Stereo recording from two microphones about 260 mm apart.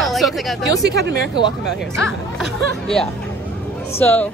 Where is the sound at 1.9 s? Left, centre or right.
Centre.